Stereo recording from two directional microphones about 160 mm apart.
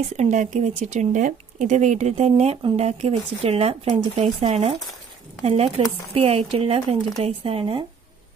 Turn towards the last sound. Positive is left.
turn(degrees=-35)  # may be behind; listen again after turning